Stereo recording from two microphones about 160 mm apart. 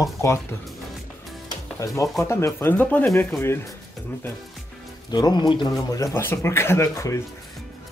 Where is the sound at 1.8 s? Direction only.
15° left (ahead or behind).